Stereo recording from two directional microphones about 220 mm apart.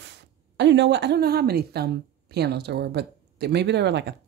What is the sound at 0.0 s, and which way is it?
Speech, 50° right (ahead or behind).